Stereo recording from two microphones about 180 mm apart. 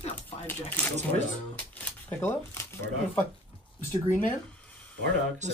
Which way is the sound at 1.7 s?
10° left (ahead or behind).